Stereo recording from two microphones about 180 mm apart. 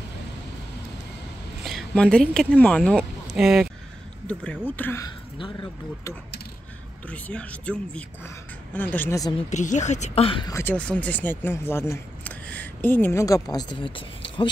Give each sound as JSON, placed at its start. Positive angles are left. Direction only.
{"t": 1.6, "sound": "speech", "side_deg": 0}
{"t": 5.0, "sound": "speech", "side_deg": 25}
{"t": 7.1, "sound": "speech", "side_deg": 5}
{"t": 9.5, "sound": "speech", "side_deg": 40}
{"t": 10.5, "sound": "speech", "side_deg": 10}